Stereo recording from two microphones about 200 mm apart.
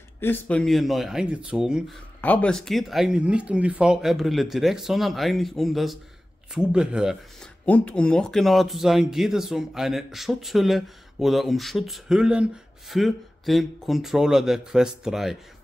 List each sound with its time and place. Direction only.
0.2 s speech: 10° left (ahead or behind)
7.6 s speech: 5° left (ahead or behind)